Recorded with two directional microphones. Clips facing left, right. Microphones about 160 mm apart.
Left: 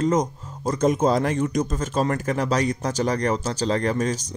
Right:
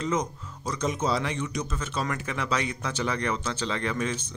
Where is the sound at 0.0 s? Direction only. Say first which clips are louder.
Left 7 dB; 45° left (ahead or behind).